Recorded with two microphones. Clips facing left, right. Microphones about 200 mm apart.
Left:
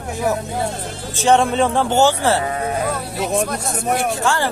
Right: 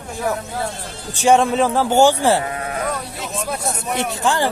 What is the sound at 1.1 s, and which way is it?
Speech, 10° right (ahead or behind).